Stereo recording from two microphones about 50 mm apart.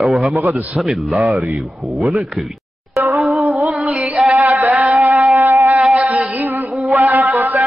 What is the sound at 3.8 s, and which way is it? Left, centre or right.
Music, right.